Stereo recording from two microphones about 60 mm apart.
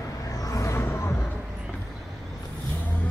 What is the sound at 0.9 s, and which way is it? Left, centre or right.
Music, left.